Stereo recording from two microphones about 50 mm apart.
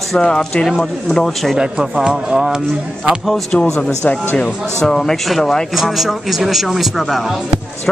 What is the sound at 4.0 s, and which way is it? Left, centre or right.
Speech, left.